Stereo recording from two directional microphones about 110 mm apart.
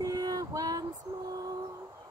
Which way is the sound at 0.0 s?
35° right (ahead or behind).